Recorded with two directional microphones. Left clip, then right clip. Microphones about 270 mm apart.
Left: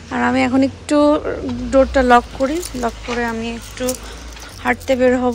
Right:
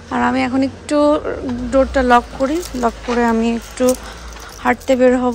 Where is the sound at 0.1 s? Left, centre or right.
Centre.